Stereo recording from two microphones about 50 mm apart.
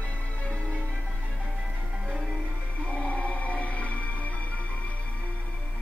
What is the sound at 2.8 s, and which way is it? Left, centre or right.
Music, left.